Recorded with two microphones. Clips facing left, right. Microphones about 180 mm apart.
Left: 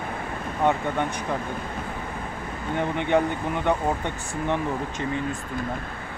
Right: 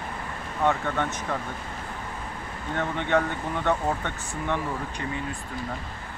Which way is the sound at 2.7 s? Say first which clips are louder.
Left 2 dB; 15° left (ahead or behind).